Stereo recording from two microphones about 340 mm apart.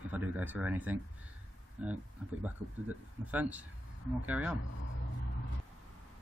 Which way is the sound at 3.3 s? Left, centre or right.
Centre.